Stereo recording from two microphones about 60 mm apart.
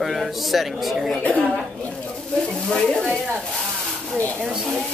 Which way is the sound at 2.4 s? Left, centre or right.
Centre.